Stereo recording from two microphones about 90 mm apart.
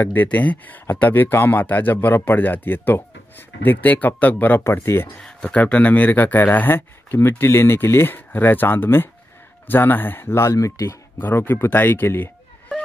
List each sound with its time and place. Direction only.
0.0 s speech: 20° left (ahead or behind)
5.2 s speech: 15° left (ahead or behind); by 11.0 s 35° left (ahead or behind)
11.1 s speech: 20° left (ahead or behind)